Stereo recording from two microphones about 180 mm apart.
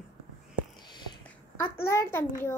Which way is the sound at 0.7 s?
25° left (ahead or behind).